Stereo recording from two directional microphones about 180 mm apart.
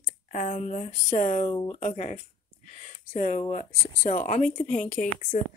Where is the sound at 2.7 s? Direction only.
40° left (ahead or behind).